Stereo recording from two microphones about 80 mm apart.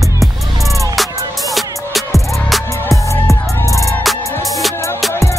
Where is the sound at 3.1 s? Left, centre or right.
Left.